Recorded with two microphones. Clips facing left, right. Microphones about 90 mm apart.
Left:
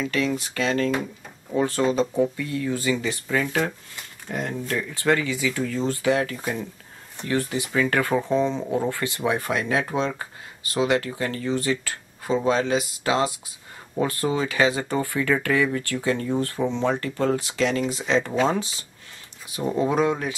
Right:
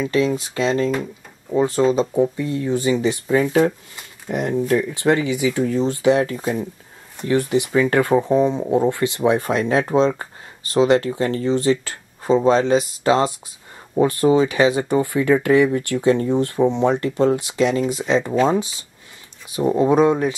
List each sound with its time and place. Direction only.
0.0 s speech: 20° right (ahead or behind)